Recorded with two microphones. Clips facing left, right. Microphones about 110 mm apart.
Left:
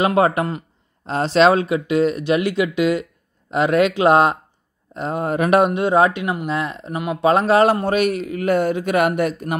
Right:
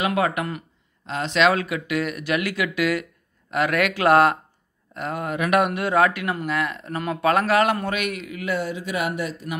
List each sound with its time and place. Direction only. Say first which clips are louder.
0.0 s speech: left 6 dB; 30° left (ahead or behind); by 9.6 s 55° left (ahead or behind)